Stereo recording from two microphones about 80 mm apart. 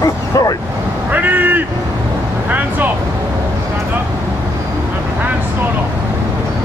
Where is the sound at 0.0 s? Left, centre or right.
Left.